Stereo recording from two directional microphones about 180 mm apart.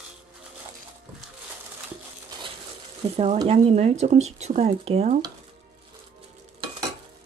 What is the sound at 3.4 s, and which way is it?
Speech, 35° right (ahead or behind).